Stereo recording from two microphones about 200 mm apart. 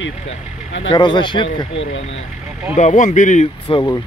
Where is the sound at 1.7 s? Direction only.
70° left (ahead or behind).